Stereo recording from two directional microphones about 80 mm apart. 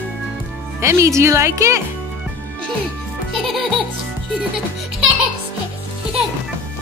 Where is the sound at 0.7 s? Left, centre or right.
Right.